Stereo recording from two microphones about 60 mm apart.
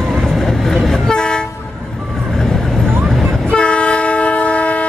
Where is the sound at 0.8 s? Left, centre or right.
Centre.